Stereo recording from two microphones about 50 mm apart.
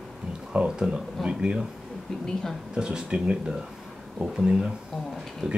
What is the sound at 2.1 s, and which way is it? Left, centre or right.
Speech, centre.